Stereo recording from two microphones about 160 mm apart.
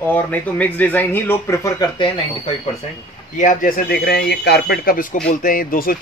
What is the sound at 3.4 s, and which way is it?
Speech, 55° left (ahead or behind).